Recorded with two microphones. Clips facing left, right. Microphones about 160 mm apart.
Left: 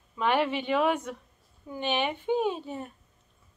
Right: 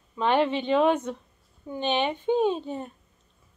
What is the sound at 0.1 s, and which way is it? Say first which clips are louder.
Speech: right 3 dB; 25° right (ahead or behind).